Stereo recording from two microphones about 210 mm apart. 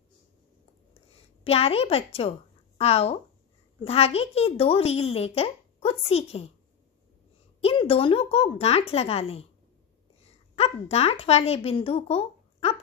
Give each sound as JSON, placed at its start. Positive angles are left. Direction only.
{"t": 1.1, "sound": "a woman's voice", "side_deg": 30}
{"t": 7.6, "sound": "a child's voice", "side_deg": 25}